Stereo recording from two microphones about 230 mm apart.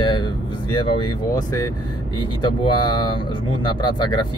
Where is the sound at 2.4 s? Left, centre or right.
Centre.